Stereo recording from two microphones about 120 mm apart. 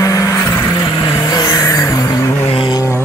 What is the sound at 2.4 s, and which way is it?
Vehicle, 50° left (ahead or behind).